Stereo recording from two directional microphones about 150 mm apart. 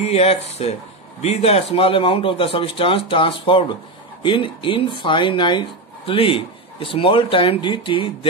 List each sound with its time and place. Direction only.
0.0 s speech: 40° left (ahead or behind)